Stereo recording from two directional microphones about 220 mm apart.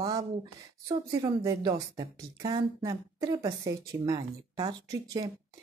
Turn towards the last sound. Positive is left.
turn(degrees=-15)  # may be behind; listen again after turning